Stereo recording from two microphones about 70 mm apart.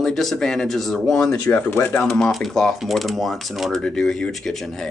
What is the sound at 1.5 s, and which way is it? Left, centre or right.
Speech, left.